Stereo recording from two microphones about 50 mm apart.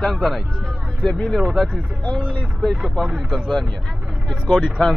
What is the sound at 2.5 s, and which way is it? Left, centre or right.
Speech, centre.